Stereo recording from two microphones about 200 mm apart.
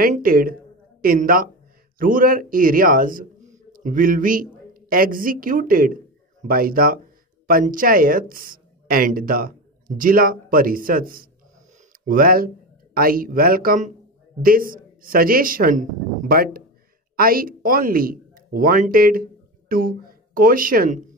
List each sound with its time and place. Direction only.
0.0 s a woman's voice: 45° right (ahead or behind)